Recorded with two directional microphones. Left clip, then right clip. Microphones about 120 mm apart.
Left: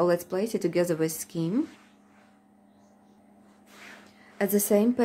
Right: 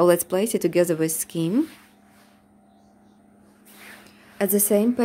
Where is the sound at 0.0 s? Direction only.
65° right (ahead or behind).